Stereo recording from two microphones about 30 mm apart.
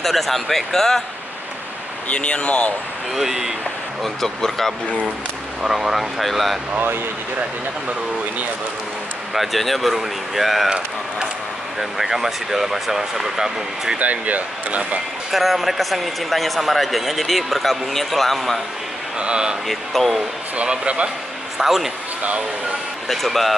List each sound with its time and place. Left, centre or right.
0.0 s speech: centre
2.1 s speech: left
3.2 s speech: centre
4.0 s speech: centre
5.6 s speech: centre
9.3 s a man's voice: centre
11.8 s speech: centre
13.9 s speech: right
15.3 s a man's voice: centre
19.1 s speech: right
19.7 s a sound: centre
20.8 s speech: right
21.5 s speech: centre
23.0 s a man's voice: centre